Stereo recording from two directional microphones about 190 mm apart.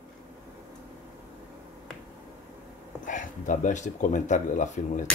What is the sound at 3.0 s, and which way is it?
Speech, 45° left (ahead or behind).